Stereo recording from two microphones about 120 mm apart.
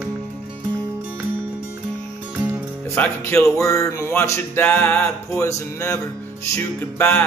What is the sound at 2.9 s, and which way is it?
Music, 20° left (ahead or behind).